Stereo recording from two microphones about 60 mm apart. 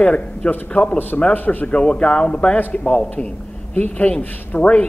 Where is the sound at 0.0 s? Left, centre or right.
Left.